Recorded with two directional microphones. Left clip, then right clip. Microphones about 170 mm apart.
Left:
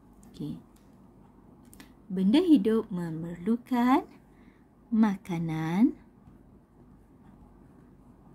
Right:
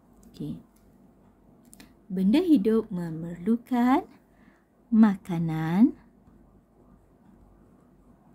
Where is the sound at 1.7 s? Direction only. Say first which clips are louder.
Right 1 dB; centre (ahead or behind).